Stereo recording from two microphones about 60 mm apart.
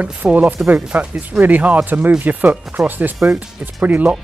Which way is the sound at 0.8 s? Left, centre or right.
Centre.